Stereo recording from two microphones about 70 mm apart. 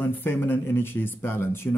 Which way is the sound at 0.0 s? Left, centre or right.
Left.